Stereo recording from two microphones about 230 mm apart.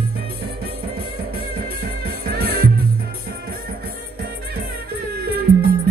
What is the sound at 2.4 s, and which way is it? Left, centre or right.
Music, right.